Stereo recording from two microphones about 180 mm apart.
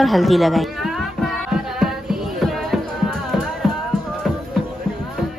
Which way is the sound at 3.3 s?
Centre (ahead or behind).